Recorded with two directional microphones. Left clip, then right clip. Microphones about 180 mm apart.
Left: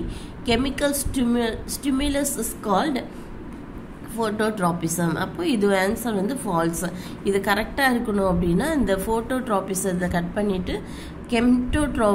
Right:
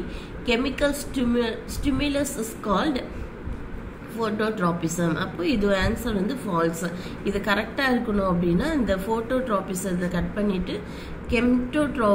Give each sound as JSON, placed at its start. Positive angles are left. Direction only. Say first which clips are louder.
{"t": 0.5, "sound": "a woman's voice", "louder": "left 1 dB", "side_deg": 45}
{"t": 4.2, "sound": "a woman's voice", "louder": "left 2 dB", "side_deg": 45}